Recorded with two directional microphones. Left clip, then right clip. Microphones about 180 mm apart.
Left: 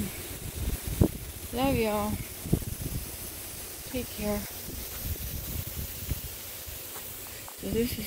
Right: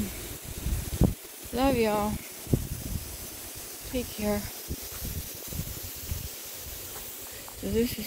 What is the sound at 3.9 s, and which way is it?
Speech, 20° right (ahead or behind).